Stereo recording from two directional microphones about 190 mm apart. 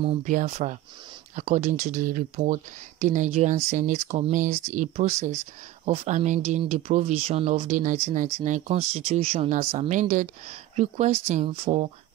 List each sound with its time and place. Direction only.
0.0 s speech: 35° right (ahead or behind)